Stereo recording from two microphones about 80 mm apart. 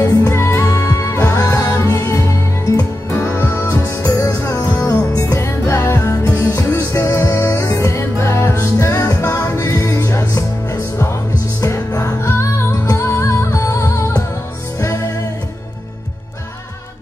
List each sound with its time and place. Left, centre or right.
0.0 s music: left
0.3 s music: left
2.6 s music: left
3.3 s music: left
3.6 s music: left